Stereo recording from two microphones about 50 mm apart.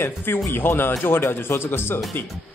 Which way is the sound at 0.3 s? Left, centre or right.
Left.